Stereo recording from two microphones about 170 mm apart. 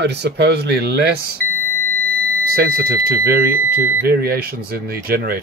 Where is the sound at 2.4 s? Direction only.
65° right (ahead or behind).